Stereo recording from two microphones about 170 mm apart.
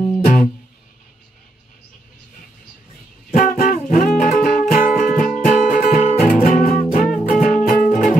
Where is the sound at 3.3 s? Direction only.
55° left (ahead or behind).